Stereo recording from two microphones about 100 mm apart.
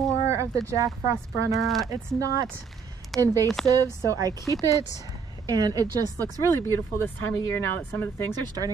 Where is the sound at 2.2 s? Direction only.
35° right (ahead or behind).